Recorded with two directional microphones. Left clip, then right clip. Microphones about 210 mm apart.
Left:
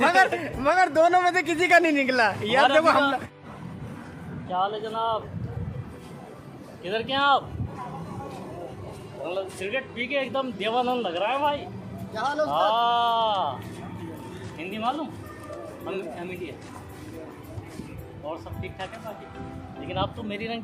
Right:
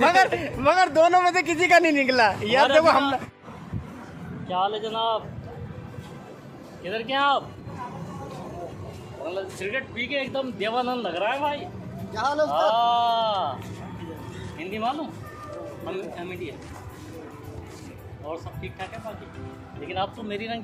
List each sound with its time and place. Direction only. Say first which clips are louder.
0.0 s a man's voice: right 1 dB; 10° right (ahead or behind)
4.5 s a man's voice: right 1 dB; centre (ahead or behind)
6.8 s speech: even; 20° left (ahead or behind)
9.2 s speech: even; 15° left (ahead or behind)
12.1 s a man's voice: right 2 dB; 20° right (ahead or behind)
12.4 s speech: even; 15° left (ahead or behind)
14.6 s speech: right 1 dB; 15° left (ahead or behind)
19.9 s speech: right 1 dB; 15° left (ahead or behind)